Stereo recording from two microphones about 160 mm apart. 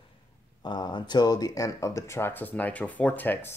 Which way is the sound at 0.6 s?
25° left (ahead or behind).